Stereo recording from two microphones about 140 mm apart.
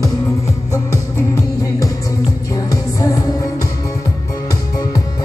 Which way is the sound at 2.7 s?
25° left (ahead or behind).